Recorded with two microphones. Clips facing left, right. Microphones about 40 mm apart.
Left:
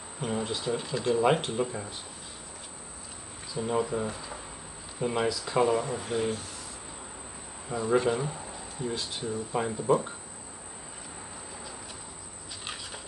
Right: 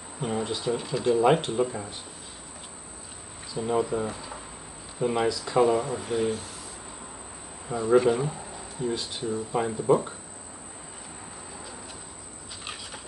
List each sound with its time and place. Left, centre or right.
0.2 s speech: centre
3.5 s speech: centre
7.7 s speech: centre